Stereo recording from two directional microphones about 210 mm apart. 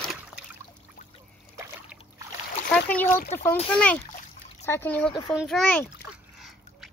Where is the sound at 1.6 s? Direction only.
15° right (ahead or behind).